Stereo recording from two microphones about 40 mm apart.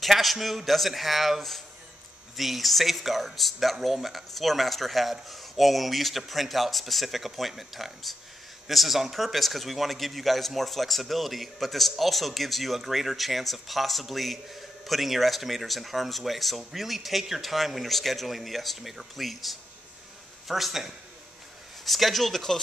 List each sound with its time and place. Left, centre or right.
0.0 s a man's voice: centre